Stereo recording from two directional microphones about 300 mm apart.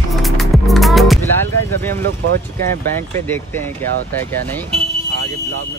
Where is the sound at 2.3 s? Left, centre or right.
Right.